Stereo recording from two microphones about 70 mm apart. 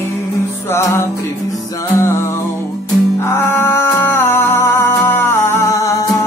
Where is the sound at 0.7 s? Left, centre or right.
Left.